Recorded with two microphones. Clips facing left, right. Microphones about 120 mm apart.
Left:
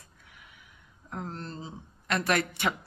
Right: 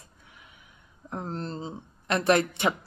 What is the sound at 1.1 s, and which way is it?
Speech, 30° right (ahead or behind).